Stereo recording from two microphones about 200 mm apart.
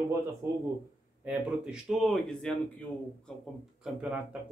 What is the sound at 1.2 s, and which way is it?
Speech, 5° right (ahead or behind).